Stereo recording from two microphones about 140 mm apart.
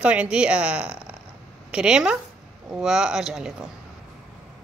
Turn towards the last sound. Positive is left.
turn(degrees=-5)  # may be behind; listen again after turning